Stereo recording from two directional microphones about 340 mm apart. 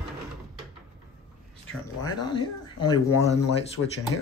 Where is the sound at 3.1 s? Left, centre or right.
Centre.